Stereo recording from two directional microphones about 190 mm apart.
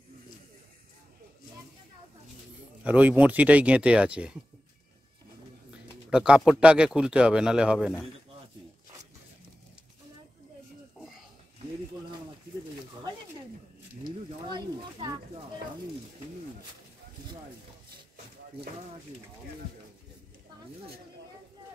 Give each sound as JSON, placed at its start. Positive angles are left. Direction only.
{"t": 2.8, "sound": "speech", "side_deg": -10}
{"t": 6.0, "sound": "speech", "side_deg": -5}
{"t": 14.0, "sound": "speech", "side_deg": -25}